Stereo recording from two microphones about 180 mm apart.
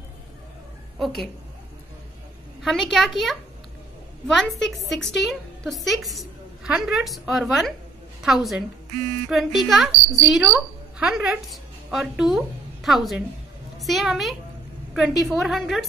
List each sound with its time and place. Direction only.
0.9 s a woman's voice: centre (ahead or behind)
2.6 s a woman's voice: centre (ahead or behind)